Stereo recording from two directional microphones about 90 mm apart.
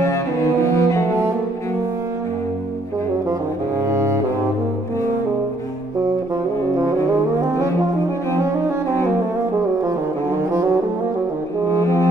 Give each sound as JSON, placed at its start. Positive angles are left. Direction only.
{"t": 0.0, "sound": "cello", "side_deg": 35}
{"t": 3.9, "sound": "music", "side_deg": -30}
{"t": 11.7, "sound": "brass instrument", "side_deg": 35}